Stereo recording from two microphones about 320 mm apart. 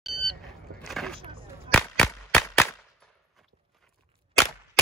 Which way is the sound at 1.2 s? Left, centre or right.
Centre.